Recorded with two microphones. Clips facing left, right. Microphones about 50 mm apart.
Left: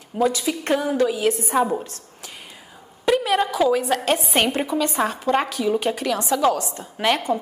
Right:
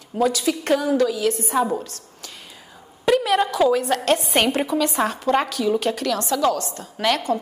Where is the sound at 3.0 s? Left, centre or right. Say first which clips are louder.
Right 1 dB; centre.